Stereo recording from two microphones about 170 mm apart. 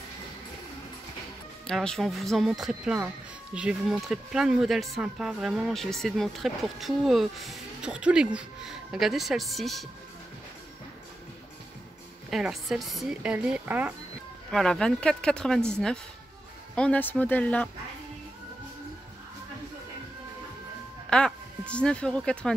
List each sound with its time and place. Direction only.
1.7 s speech: 5° left (ahead or behind)
12.3 s speech: centre (ahead or behind)
14.5 s speech: 5° left (ahead or behind)
21.1 s speech: 5° left (ahead or behind)